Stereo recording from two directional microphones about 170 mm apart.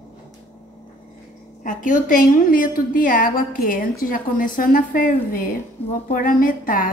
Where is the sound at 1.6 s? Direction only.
50° left (ahead or behind).